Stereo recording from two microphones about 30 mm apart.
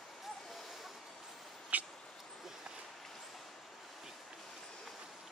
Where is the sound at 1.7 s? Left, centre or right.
Right.